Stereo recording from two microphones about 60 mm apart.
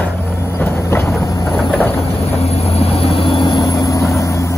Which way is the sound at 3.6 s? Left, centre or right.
Left.